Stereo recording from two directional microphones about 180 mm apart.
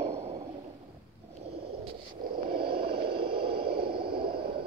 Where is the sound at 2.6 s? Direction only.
60° right (ahead or behind).